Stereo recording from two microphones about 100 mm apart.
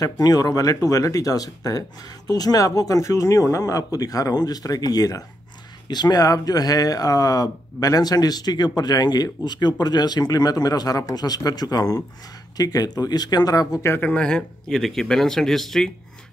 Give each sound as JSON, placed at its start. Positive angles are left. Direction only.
{"t": 0.0, "sound": "speech", "side_deg": 40}
{"t": 13.7, "sound": "speech", "side_deg": 25}